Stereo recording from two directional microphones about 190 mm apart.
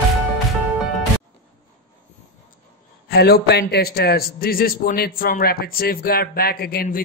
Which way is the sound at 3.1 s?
55° left (ahead or behind).